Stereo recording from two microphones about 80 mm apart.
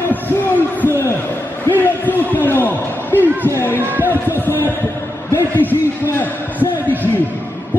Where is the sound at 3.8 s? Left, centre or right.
Right.